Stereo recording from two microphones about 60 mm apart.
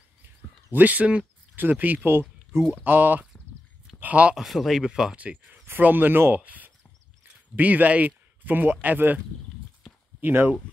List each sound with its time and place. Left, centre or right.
0.7 s speech: right
4.0 s speech: right
4.4 s speech: centre
5.1 s speech: right
10.2 s speech: right